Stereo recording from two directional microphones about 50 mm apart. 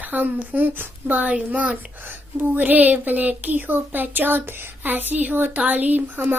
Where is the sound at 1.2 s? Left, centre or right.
Right.